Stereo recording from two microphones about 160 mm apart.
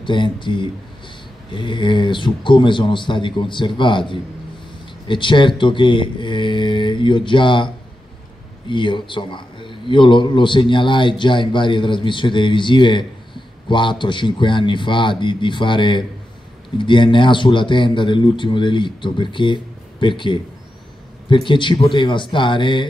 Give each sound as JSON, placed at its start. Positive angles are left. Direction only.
{"t": 0.0, "sound": "a man's voice", "side_deg": 30}
{"t": 5.0, "sound": "a man's voice", "side_deg": 30}
{"t": 21.5, "sound": "a man's voice", "side_deg": 30}